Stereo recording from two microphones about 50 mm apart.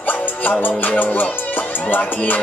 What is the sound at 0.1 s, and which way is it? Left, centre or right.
Music, left.